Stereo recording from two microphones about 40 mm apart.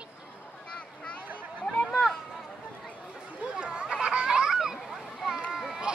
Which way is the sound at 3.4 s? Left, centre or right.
Right.